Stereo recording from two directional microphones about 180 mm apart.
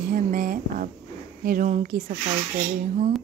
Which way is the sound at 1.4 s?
50° right (ahead or behind).